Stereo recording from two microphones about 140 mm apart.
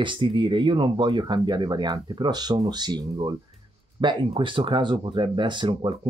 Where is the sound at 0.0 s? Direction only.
35° right (ahead or behind).